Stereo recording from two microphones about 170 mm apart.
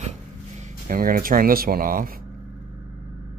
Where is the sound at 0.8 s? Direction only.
55° right (ahead or behind).